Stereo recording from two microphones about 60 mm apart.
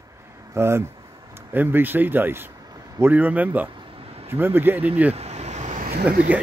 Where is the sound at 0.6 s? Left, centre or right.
Right.